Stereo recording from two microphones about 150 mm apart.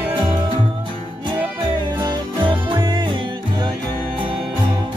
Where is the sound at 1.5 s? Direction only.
30° right (ahead or behind).